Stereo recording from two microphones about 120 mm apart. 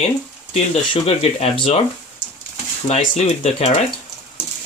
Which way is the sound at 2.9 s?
60° left (ahead or behind).